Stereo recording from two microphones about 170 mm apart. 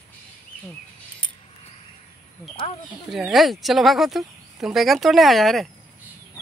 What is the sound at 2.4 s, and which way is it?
Speech, 15° left (ahead or behind).